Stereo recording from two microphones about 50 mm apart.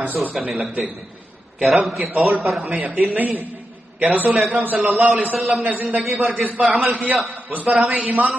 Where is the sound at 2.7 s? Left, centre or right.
Right.